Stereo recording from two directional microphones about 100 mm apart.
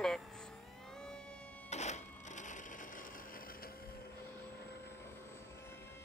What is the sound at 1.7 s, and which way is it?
Printer, 90° left.